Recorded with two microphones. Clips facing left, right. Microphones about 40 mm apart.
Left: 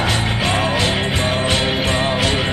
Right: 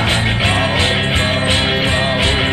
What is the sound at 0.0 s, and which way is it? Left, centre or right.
Music, right.